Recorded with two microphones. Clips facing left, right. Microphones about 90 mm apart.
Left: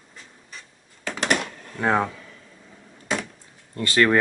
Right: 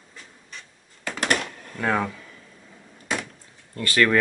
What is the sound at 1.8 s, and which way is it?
Speech, 20° left (ahead or behind).